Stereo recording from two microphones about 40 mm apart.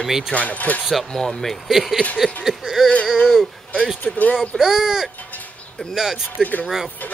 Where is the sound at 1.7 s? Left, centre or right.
Centre.